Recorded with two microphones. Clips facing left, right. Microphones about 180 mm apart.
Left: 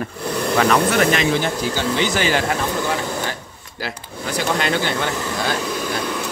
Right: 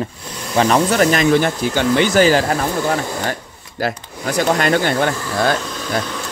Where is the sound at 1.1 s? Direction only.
50° right (ahead or behind).